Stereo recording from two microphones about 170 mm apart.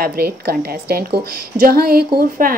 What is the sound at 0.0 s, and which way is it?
A woman's voice, 65° right (ahead or behind).